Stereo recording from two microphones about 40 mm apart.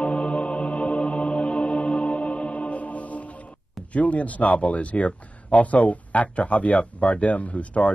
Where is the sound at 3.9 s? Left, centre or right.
Left.